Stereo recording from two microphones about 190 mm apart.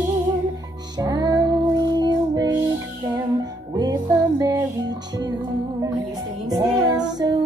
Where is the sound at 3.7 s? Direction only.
20° right (ahead or behind).